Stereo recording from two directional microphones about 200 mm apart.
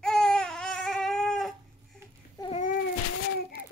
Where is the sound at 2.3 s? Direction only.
25° left (ahead or behind).